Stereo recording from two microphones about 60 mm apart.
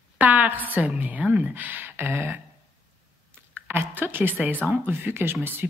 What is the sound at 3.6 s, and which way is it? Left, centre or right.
Speech, right.